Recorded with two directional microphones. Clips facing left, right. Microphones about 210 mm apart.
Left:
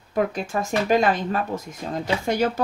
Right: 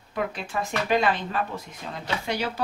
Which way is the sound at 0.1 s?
45° left (ahead or behind).